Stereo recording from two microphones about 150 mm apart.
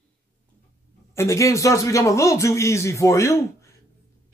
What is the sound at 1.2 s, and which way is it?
A man's voice, 20° left (ahead or behind).